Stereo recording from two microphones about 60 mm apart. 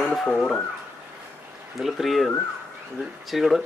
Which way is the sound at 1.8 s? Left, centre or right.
Centre.